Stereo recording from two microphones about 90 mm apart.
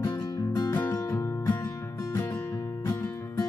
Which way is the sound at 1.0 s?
35° left (ahead or behind).